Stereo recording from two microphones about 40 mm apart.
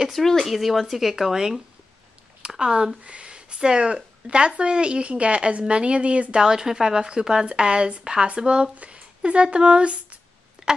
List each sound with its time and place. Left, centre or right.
0.1 s speech: centre
0.6 s speech: centre
2.5 s speech: centre
6.3 s a woman's voice: centre
10.6 s a sound: right